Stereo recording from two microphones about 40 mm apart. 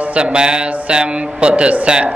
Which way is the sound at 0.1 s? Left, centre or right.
Right.